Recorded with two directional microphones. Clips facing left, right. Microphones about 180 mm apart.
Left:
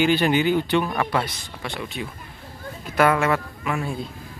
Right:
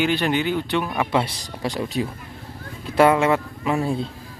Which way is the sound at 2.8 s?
25° right (ahead or behind).